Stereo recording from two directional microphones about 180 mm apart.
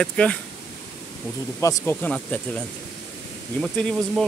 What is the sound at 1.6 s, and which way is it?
Speech, 20° left (ahead or behind).